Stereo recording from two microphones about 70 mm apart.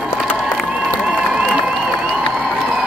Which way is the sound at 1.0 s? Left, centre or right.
Centre.